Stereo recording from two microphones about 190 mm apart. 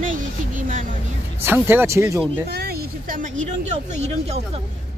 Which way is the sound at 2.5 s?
55° right (ahead or behind).